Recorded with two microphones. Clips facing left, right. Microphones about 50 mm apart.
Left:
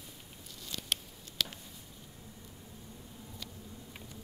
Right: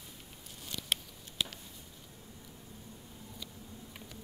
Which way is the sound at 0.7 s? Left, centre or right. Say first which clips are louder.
Even; right.